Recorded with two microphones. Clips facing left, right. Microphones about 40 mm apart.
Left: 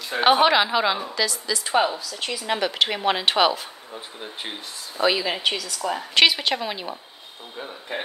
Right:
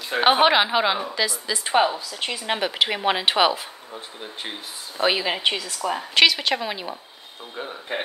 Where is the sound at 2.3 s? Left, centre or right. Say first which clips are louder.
Left 1 dB; right.